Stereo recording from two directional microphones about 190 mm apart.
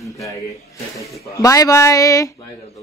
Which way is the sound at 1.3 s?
15° left (ahead or behind).